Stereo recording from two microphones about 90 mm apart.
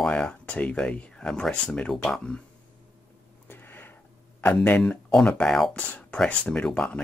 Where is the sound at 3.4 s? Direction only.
25° left (ahead or behind).